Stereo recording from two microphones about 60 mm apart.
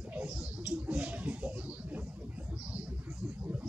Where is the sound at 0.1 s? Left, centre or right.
Right.